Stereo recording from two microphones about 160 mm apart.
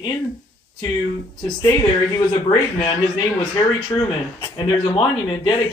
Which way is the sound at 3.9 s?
15° left (ahead or behind).